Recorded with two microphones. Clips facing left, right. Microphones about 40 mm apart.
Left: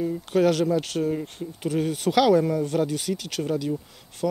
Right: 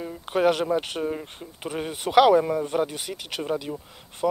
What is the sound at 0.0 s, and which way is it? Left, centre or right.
Speech, centre.